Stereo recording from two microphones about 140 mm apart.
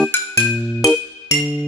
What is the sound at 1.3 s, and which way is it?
Music, 25° left (ahead or behind).